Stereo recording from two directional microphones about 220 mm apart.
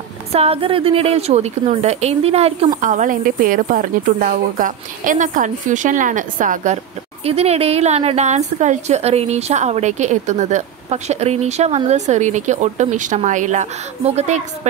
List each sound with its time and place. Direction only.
0.3 s a woman's voice: 25° right (ahead or behind)